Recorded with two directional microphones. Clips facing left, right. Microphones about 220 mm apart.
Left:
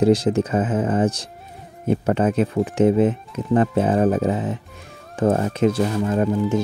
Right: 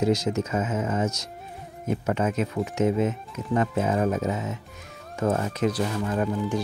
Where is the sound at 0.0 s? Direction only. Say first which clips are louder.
Left 7 dB; 30° left (ahead or behind).